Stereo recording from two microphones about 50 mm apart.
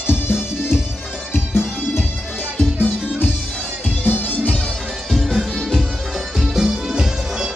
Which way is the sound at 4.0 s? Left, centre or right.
Left.